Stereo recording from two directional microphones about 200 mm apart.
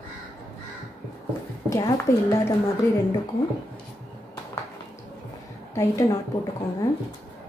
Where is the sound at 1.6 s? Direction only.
15° left (ahead or behind).